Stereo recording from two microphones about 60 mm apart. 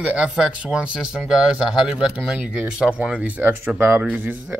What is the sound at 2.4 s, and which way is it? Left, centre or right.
Speech, centre.